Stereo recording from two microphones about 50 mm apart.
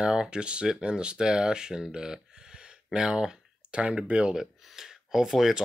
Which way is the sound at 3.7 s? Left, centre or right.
Right.